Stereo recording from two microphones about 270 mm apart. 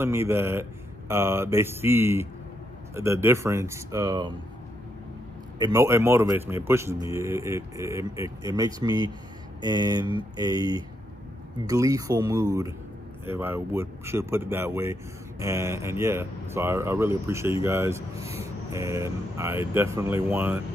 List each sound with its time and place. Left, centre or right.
0.0 s speech: centre
5.6 s speech: centre
9.6 s speech: centre
9.8 s speech: centre